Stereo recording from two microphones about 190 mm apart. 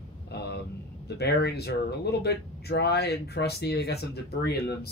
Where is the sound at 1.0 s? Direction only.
60° left (ahead or behind).